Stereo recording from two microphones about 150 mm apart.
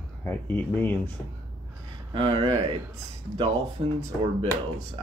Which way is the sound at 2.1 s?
35° right (ahead or behind).